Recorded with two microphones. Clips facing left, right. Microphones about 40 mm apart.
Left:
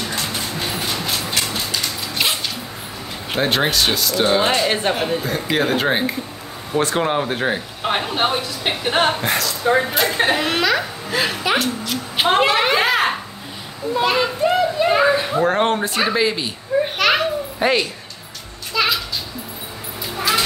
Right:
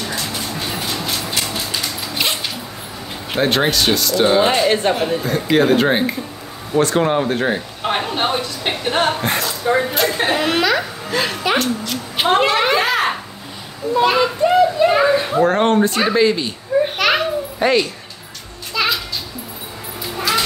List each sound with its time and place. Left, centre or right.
0.1 s train: left
0.4 s train: centre
3.3 s speech: centre
13.9 s a child's voice: centre
18.7 s children playing: centre
20.2 s dog: centre